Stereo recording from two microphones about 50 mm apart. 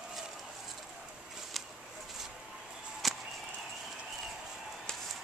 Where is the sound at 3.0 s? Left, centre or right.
Centre.